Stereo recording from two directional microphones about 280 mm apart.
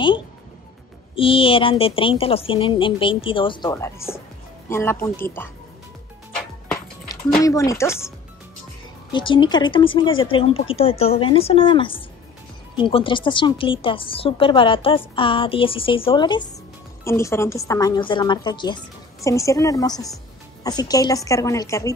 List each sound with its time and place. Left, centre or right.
1.1 s a woman's voice: centre
7.4 s a woman's voice: centre
9.1 s a woman's voice: centre